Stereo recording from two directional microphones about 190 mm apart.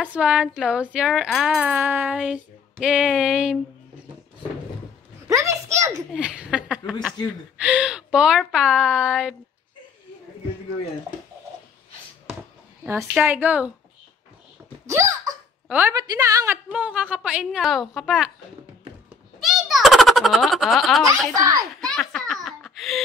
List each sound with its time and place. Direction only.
0.1 s speech: 5° right (ahead or behind)
5.3 s a sound: 15° right (ahead or behind)
6.1 s speech: 5° right (ahead or behind)
12.8 s a woman's voice: 10° right (ahead or behind)
14.9 s a woman's voice: 15° right (ahead or behind)
19.4 s a sound: centre (ahead or behind)
21.4 s a child's voice: 20° right (ahead or behind)
21.8 s a child's voice: centre (ahead or behind)